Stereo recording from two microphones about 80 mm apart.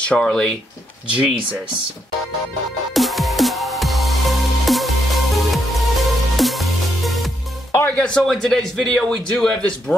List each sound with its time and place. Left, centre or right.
0.0 s a man's voice: centre
2.9 s music: centre
7.8 s a man's voice: centre